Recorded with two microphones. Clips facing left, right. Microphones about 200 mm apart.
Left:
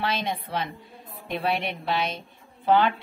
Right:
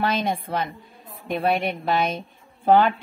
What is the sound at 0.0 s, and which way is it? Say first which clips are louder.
A woman's voice: right 4 dB; 50° right (ahead or behind).